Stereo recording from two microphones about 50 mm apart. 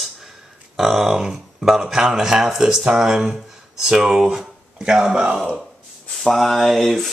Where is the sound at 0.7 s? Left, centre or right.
Centre.